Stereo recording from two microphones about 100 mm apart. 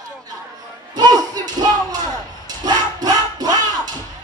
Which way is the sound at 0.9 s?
40° right (ahead or behind).